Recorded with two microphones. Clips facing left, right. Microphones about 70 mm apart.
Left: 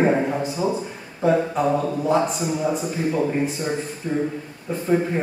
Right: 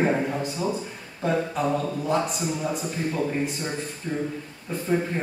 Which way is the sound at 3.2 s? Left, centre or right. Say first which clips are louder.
Left 3 dB; centre.